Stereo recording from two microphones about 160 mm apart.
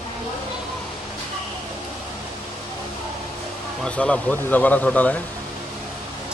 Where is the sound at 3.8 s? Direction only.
5° left (ahead or behind).